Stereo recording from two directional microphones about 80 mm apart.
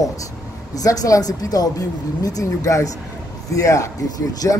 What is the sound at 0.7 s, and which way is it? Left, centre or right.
A man's voice, left.